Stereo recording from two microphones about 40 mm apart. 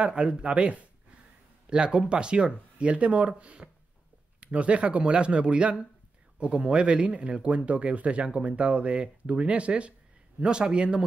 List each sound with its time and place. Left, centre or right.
0.1 s speech: right
1.7 s speech: right